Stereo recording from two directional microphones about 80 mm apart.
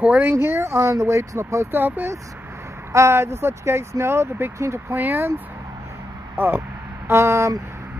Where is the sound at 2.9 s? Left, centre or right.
Right.